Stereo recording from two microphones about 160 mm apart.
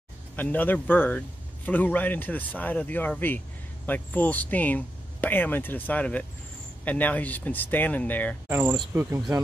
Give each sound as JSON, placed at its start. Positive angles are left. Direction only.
{"t": 0.4, "sound": "speech", "side_deg": 10}
{"t": 8.5, "sound": "speech", "side_deg": -10}